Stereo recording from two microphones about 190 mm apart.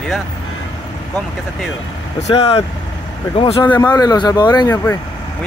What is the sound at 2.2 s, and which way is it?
Speech, 30° left (ahead or behind).